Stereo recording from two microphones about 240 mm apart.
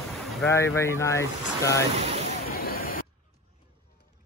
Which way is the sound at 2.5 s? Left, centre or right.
Left.